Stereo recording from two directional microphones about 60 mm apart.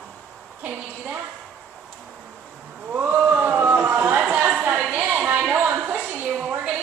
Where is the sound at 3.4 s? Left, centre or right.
Right.